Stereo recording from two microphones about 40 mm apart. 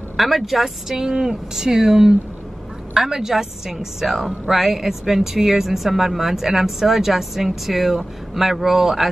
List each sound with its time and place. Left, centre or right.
0.2 s a woman's voice: centre